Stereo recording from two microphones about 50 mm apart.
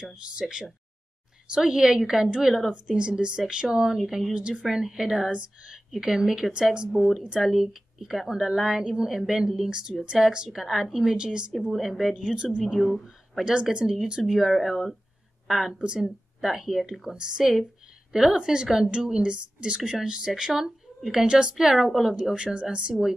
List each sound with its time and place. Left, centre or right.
0.0 s a woman's voice: centre
2.2 s a woman's voice: right
5.3 s speech: right
5.9 s a woman's voice: centre
6.9 s a woman's voice: centre
11.7 s a woman's voice: centre
12.7 s a woman's voice: centre
15.8 s speech: centre
16.3 s a woman's voice: centre
21.3 s a woman's voice: centre